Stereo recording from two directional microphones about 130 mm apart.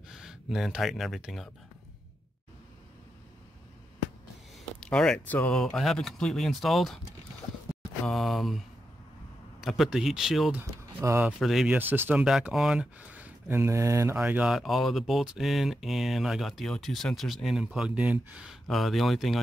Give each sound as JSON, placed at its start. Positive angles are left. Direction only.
{"t": 0.1, "sound": "speech", "side_deg": -5}
{"t": 4.7, "sound": "speech", "side_deg": 5}
{"t": 8.0, "sound": "speech", "side_deg": 0}
{"t": 11.0, "sound": "speech", "side_deg": -15}
{"t": 11.3, "sound": "speech", "side_deg": 0}
{"t": 14.1, "sound": "speech", "side_deg": -10}